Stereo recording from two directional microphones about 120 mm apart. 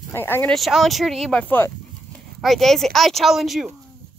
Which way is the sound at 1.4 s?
15° left (ahead or behind).